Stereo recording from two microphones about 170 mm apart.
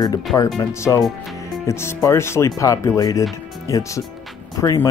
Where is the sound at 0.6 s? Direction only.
15° left (ahead or behind).